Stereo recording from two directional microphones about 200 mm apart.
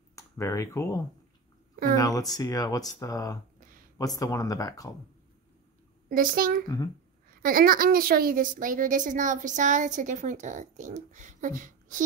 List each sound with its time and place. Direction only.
0.1 s a sound: 15° left (ahead or behind)
2.0 s speech: 15° left (ahead or behind)
6.0 s a child's voice: 45° right (ahead or behind)